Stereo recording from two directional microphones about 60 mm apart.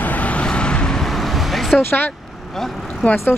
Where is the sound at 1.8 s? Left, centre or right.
Left.